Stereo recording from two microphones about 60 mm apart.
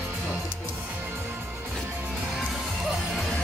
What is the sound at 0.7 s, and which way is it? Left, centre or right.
Music, right.